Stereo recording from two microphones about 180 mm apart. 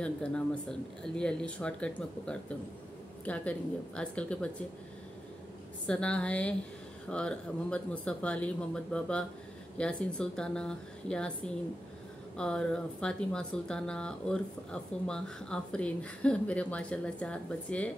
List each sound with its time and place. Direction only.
0.0 s speech: 5° left (ahead or behind)
5.9 s speech: 5° left (ahead or behind)